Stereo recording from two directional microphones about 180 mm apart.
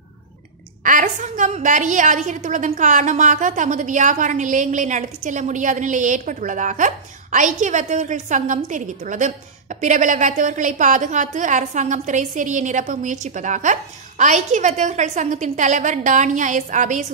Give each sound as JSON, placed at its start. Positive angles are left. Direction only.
{"t": 0.8, "sound": "a woman's voice", "side_deg": -45}